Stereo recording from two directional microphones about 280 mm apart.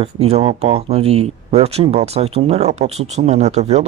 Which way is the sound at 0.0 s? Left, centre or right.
Right.